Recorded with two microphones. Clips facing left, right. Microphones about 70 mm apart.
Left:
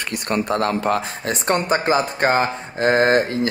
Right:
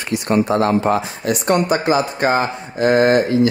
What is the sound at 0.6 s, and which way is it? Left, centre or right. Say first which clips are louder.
Speech: right 4 dB; right.